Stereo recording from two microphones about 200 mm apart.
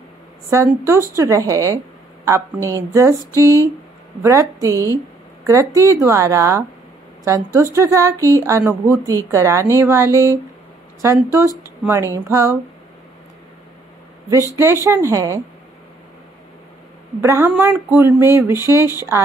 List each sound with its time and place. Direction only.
0.5 s a woman's voice: 15° right (ahead or behind)
4.2 s a woman's voice: 15° right (ahead or behind)
14.5 s a woman's voice: 15° right (ahead or behind)
17.2 s a woman's voice: 10° right (ahead or behind)